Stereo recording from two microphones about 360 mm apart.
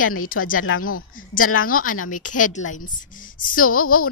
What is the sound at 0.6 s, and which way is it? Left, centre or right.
A woman's voice, left.